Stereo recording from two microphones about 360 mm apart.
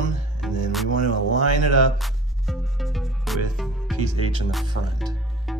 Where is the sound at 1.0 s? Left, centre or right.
Right.